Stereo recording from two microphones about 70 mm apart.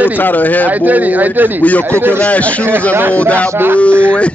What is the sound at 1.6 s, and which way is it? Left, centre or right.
Speech, left.